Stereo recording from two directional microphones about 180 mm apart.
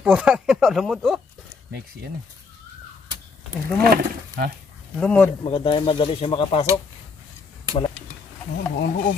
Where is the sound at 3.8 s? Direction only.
55° right (ahead or behind).